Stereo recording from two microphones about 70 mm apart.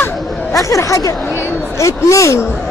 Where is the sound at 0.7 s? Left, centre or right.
Left.